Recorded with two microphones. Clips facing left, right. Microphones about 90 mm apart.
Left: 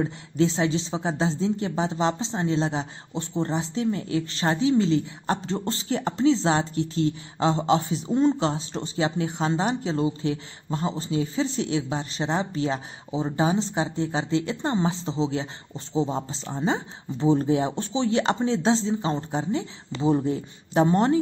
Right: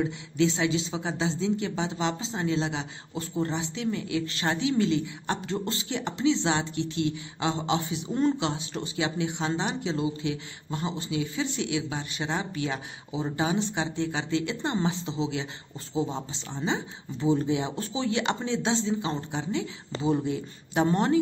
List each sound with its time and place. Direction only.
0.0 s speech: 35° left (ahead or behind)
8.1 s speech: 20° left (ahead or behind)
8.4 s speech: 35° left (ahead or behind)